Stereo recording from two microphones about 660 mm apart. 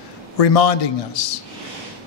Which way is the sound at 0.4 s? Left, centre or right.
Left.